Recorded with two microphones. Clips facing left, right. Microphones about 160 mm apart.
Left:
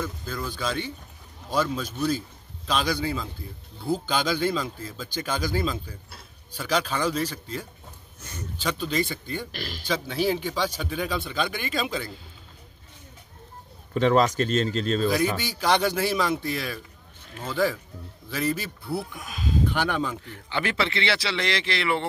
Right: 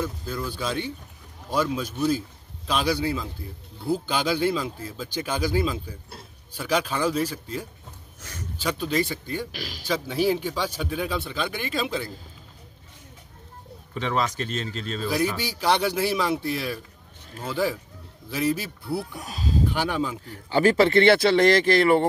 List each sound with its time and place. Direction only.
0.0 s a man's voice: 10° right (ahead or behind)
13.9 s speech: 45° left (ahead or behind)
15.4 s speech: 5° right (ahead or behind)
19.1 s speech: 35° right (ahead or behind)
19.7 s speech: 10° right (ahead or behind)
20.2 s speech: 40° right (ahead or behind)